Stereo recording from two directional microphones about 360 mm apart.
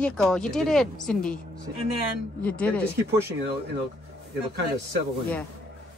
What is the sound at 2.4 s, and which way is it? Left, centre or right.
Speech, centre.